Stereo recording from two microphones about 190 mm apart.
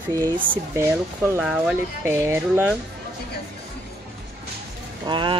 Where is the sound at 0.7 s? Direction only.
15° right (ahead or behind).